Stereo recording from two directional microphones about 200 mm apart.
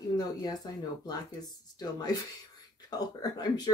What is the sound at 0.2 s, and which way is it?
A woman's voice, 20° left (ahead or behind).